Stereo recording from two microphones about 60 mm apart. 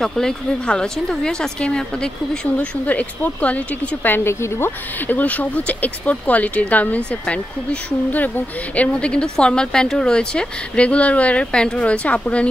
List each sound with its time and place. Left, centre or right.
0.0 s a woman's voice: centre; by 4.3 s left
4.3 s speech: left
8.7 s a woman's voice: centre